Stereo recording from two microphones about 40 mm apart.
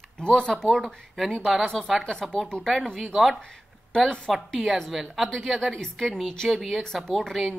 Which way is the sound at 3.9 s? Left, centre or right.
Centre.